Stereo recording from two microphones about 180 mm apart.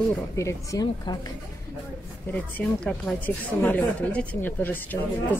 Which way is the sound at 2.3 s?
5° left (ahead or behind).